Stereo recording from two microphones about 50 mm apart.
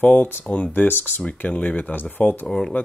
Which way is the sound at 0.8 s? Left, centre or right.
Left.